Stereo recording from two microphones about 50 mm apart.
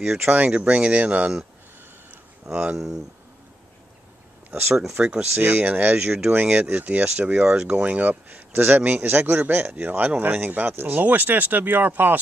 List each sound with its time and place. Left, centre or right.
0.5 s speech: right
2.4 s speech: centre
4.5 s speech: right
4.8 s speech: centre
5.4 s speech: right
5.9 s speech: centre
7.7 s speech: right
9.0 s speech: right